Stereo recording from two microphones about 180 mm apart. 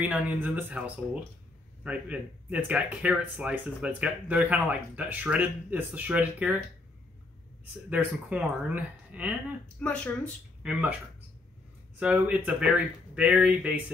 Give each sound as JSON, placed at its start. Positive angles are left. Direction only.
{"t": 0.0, "sound": "speech", "side_deg": -10}
{"t": 7.9, "sound": "speech", "side_deg": -5}
{"t": 9.8, "sound": "speech", "side_deg": 5}
{"t": 10.6, "sound": "speech", "side_deg": -5}
{"t": 12.0, "sound": "speech", "side_deg": -5}